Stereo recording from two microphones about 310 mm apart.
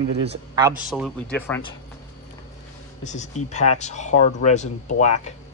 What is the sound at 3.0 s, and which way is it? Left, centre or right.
Speech, left.